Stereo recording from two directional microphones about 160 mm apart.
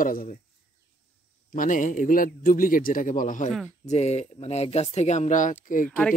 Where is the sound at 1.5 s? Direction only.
55° left (ahead or behind).